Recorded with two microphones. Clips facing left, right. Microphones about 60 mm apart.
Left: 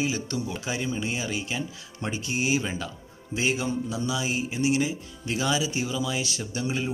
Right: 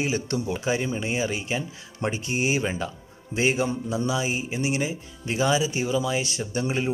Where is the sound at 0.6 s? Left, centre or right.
Right.